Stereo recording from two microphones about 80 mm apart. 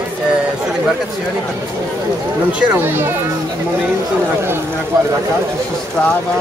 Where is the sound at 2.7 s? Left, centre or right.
Right.